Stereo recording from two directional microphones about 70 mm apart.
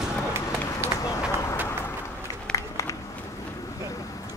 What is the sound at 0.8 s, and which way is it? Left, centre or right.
Run, right.